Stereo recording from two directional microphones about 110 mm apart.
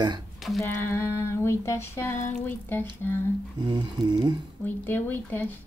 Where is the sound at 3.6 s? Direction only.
40° right (ahead or behind).